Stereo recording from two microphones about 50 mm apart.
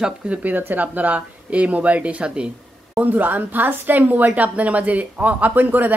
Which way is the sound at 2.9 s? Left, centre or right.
Right.